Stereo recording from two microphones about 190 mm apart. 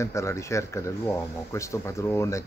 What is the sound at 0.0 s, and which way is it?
Speech, 15° left (ahead or behind).